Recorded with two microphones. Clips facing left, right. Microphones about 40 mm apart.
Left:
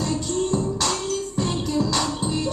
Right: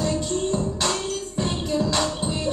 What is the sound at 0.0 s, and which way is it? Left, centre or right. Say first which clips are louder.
Music: even; centre.